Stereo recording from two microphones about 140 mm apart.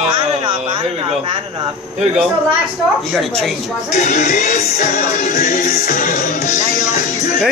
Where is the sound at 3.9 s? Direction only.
55° left (ahead or behind); by 6.6 s 75° left (ahead or behind).